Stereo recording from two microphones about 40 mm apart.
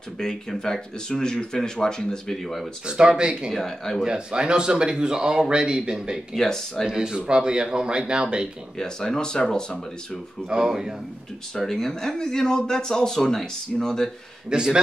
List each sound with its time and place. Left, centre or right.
0.2 s speech: centre
2.3 s speech: centre
2.9 s speech: right
3.5 s speech: centre
4.0 s speech: right
6.3 s speech: centre
6.9 s speech: centre
8.7 s speech: centre
10.5 s speech: right
11.5 s speech: centre
14.5 s speech: centre